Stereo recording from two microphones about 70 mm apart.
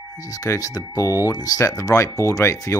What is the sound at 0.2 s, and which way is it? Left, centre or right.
Speech, left.